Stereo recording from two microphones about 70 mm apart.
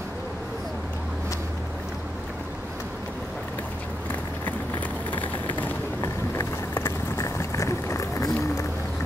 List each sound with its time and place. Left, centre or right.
5.1 s a sound: left
5.9 s vehicle: left
7.2 s run: left